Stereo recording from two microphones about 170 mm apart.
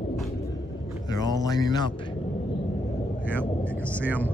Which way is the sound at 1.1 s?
20° left (ahead or behind).